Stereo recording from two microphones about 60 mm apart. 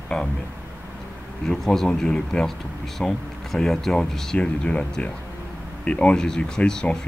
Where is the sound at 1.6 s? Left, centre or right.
Centre.